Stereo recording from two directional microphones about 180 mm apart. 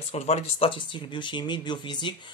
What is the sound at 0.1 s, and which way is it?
Speech, 35° left (ahead or behind).